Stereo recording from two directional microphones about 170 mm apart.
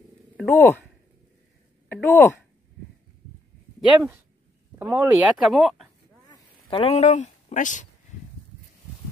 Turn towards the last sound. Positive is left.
turn(degrees=50)  # may be behind; listen again after turning